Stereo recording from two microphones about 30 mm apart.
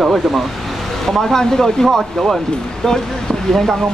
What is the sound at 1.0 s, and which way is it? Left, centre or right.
Speech, centre.